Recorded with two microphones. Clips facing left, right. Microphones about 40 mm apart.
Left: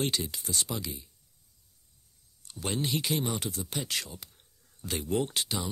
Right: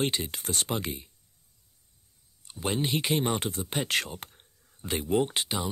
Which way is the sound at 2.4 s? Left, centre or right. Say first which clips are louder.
Right 3 dB; right.